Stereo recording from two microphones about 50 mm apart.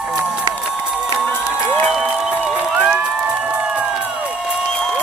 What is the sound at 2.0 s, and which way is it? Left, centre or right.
Crowd, centre.